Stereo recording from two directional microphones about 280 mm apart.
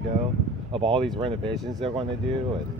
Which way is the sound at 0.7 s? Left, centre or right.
Centre.